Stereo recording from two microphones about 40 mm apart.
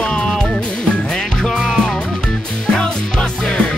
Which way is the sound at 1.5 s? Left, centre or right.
Centre.